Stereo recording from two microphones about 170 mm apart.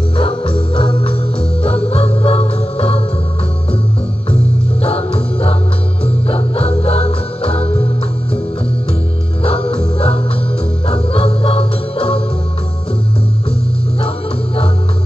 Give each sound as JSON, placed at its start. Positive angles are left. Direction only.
{"t": 0.2, "sound": "organ", "side_deg": 35}
{"t": 1.6, "sound": "music", "side_deg": 35}
{"t": 4.8, "sound": "music", "side_deg": 35}
{"t": 9.4, "sound": "music", "side_deg": 35}
{"t": 14.0, "sound": "music", "side_deg": 35}